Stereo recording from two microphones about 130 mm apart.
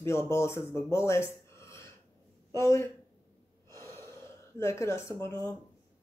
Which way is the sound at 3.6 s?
20° left (ahead or behind).